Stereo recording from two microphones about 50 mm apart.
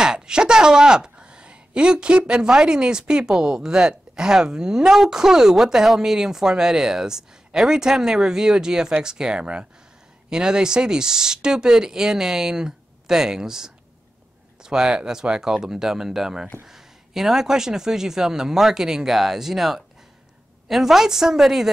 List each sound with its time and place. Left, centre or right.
0.0 s a woman's voice: centre